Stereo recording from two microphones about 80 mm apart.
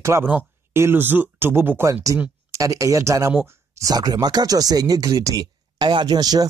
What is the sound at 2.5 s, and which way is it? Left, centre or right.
Speech, right.